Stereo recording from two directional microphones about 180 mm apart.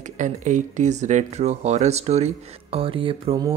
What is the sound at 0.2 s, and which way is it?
Speech, 45° right (ahead or behind).